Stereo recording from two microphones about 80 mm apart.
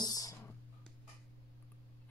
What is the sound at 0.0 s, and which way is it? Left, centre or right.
Clicking, left.